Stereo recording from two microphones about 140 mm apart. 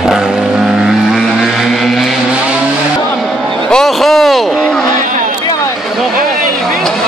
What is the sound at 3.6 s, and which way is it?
Vehicle, 5° left (ahead or behind).